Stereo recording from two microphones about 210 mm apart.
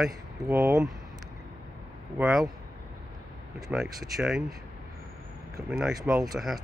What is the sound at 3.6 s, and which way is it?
Speech, centre (ahead or behind).